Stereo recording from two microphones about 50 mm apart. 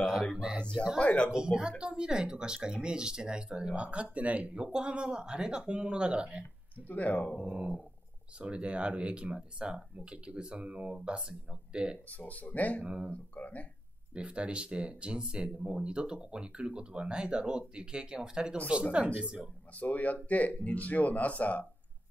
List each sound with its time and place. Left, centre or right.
0.0 s a sound: centre
1.0 s speech: left
1.3 s speech: centre
6.9 s speech: left
7.3 s speech: right
12.1 s speech: left
12.8 s speech: right
13.1 s speech: left
14.1 s speech: right
19.8 s speech: left